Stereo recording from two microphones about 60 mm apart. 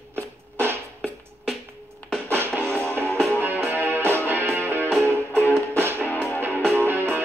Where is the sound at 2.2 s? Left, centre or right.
Right.